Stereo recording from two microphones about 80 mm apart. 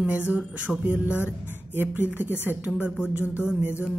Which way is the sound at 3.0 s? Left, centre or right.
Centre.